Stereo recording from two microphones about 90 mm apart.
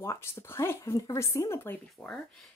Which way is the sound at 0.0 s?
30° left (ahead or behind).